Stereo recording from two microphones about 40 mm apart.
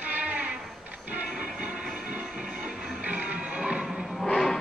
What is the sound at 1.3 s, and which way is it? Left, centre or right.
Train, right.